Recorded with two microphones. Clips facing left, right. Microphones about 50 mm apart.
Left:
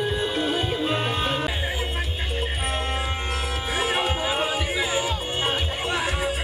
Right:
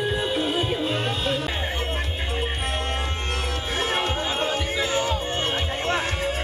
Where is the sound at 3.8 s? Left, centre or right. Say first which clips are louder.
Left 1 dB; centre.